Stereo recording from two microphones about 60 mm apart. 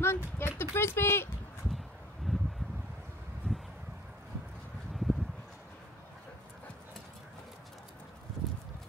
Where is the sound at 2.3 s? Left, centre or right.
Centre.